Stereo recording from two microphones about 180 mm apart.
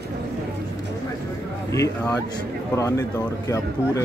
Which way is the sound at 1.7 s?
20° left (ahead or behind).